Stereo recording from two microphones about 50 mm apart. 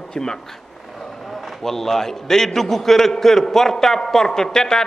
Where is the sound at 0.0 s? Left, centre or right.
Centre.